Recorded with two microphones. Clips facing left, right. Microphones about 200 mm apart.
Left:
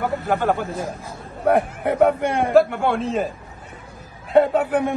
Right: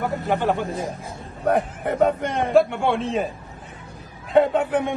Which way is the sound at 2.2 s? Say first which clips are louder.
Left 2 dB; 10° left (ahead or behind).